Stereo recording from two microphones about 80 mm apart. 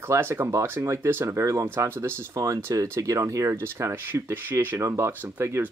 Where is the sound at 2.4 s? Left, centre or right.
Right.